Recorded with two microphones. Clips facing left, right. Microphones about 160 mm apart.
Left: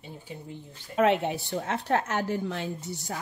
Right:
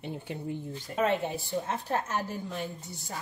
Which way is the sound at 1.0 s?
75° left (ahead or behind).